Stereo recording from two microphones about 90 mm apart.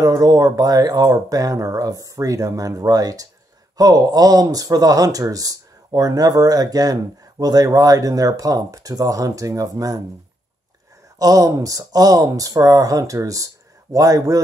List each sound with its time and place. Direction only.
0.0 s speech: 45° right (ahead or behind)
11.1 s speech: 40° right (ahead or behind)